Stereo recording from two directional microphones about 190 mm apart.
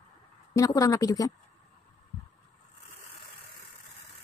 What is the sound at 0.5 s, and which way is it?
Speech, 20° left (ahead or behind).